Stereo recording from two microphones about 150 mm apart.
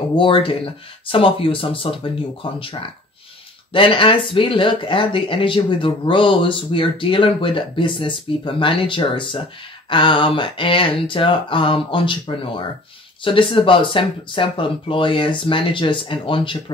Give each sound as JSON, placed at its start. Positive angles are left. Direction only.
{"t": 0.1, "sound": "speech", "side_deg": 35}